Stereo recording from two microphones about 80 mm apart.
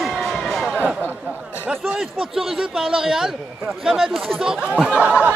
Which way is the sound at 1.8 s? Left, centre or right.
Centre.